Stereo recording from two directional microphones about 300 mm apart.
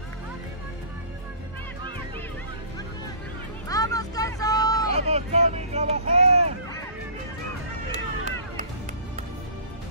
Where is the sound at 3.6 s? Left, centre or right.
Centre.